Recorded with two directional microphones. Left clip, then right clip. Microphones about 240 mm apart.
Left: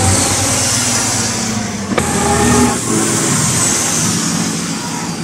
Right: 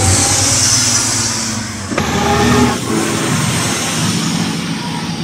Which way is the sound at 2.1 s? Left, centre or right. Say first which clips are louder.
Right 1 dB; centre.